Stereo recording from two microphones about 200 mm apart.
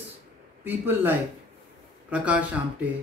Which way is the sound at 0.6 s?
10° right (ahead or behind).